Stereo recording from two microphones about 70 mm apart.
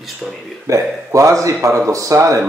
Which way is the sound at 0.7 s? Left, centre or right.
Right.